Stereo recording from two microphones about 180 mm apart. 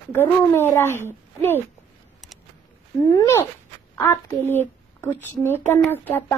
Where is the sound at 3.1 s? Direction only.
15° left (ahead or behind).